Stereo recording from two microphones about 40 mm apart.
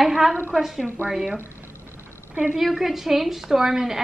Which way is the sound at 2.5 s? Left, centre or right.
Centre.